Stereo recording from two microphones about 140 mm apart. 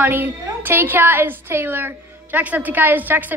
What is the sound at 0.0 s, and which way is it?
A woman's voice, 15° right (ahead or behind).